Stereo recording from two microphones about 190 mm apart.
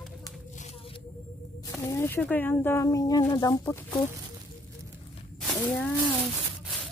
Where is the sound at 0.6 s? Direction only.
30° left (ahead or behind).